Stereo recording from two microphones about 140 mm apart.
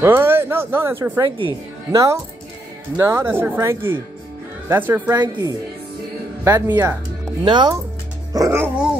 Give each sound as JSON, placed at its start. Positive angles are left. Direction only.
{"t": 0.0, "sound": "speech", "side_deg": -15}
{"t": 1.2, "sound": "speech", "side_deg": -30}
{"t": 3.0, "sound": "speech", "side_deg": -15}
{"t": 5.1, "sound": "speech", "side_deg": -25}
{"t": 6.4, "sound": "speech", "side_deg": -15}
{"t": 7.4, "sound": "speech", "side_deg": -30}
{"t": 8.3, "sound": "music", "side_deg": -25}